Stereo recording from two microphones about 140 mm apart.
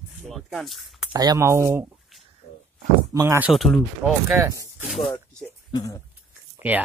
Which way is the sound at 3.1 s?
20° right (ahead or behind).